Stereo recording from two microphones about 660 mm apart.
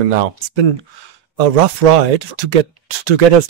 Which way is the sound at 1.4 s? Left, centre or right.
Right.